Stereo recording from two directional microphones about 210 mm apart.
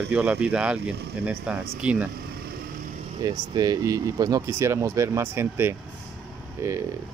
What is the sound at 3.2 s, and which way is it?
Speech, 20° right (ahead or behind).